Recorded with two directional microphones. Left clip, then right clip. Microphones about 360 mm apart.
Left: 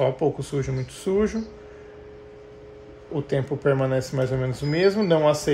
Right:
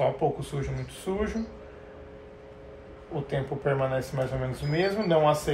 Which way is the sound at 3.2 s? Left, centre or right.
Left.